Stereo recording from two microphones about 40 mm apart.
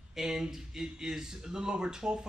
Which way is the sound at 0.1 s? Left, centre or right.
Centre.